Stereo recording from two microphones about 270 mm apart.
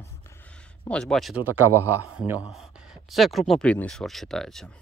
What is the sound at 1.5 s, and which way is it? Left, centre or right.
Speech, right.